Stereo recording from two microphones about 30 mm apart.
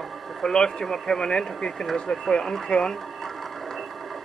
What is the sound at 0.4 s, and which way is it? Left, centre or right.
Speech, left.